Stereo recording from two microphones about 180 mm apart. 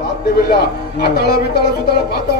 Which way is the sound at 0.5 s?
65° left (ahead or behind).